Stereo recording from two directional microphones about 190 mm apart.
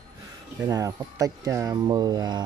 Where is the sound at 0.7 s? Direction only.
20° right (ahead or behind).